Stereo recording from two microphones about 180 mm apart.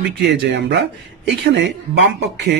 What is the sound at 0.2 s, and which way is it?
Speech, 75° right (ahead or behind).